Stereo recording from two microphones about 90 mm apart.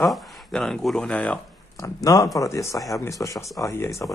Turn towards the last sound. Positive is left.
turn(degrees=30)  # may be behind; listen again after turning